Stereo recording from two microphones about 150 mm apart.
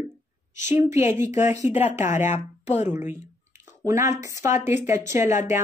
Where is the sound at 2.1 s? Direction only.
50° left (ahead or behind).